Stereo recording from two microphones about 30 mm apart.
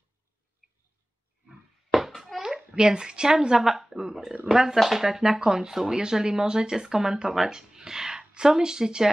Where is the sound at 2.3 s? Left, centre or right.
Centre.